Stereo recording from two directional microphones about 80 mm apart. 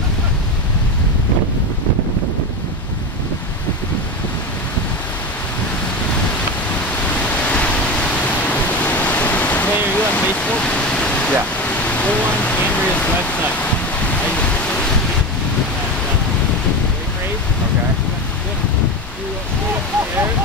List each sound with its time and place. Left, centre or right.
7.1 s waves: centre